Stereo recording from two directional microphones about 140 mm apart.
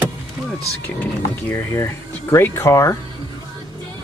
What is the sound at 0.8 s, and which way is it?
Speech, 10° left (ahead or behind).